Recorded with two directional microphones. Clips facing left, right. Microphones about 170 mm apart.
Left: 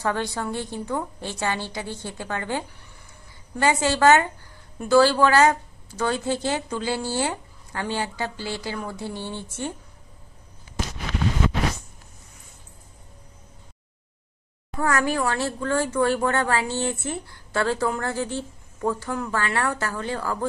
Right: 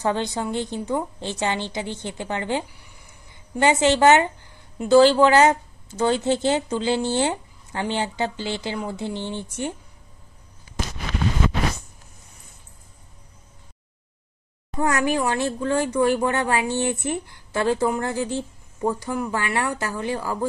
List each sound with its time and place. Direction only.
0.0 s a woman's voice: 20° right (ahead or behind)
14.8 s speech: 20° right (ahead or behind)